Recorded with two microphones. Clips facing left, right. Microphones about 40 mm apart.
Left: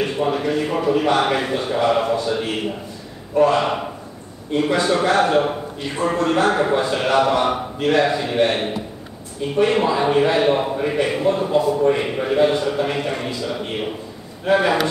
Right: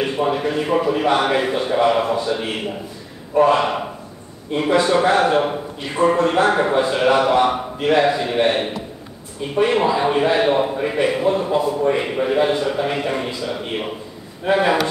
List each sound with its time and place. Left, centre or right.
0.0 s speech: centre
5.9 s a man's voice: centre